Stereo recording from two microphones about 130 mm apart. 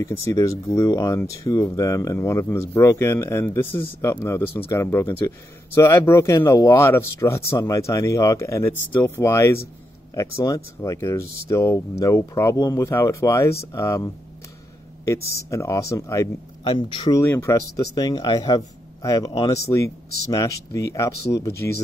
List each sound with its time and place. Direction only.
0.0 s speech: 20° left (ahead or behind)
16.6 s speech: 35° left (ahead or behind)
17.2 s speech: 20° left (ahead or behind)